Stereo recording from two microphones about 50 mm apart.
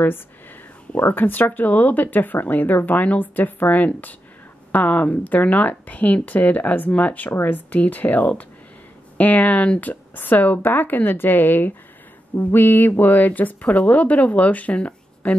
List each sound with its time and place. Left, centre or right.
0.9 s speech: left